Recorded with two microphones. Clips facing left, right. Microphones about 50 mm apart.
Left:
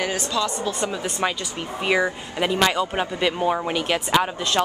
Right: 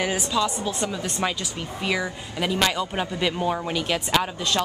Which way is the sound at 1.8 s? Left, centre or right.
Left.